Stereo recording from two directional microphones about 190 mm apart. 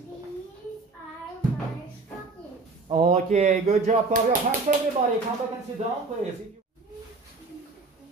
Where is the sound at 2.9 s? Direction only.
35° right (ahead or behind).